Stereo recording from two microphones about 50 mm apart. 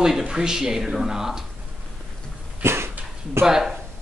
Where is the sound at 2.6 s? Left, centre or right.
Right.